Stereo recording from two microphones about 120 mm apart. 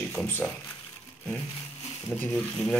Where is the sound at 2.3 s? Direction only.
5° left (ahead or behind).